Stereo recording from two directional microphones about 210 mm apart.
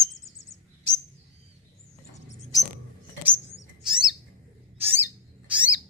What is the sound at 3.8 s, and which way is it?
Owl, 5° right (ahead or behind).